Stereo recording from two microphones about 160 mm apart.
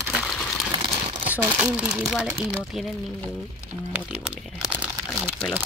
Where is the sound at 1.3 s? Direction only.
10° right (ahead or behind).